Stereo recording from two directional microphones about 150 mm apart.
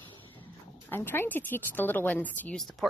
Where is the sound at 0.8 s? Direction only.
15° left (ahead or behind).